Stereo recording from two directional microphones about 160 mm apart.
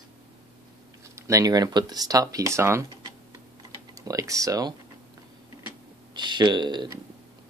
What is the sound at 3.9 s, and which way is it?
Speech, 20° right (ahead or behind).